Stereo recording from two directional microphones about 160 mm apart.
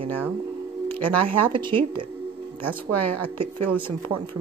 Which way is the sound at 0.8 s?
10° left (ahead or behind).